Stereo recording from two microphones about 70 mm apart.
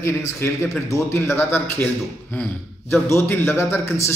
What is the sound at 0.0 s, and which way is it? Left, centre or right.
Speech, left.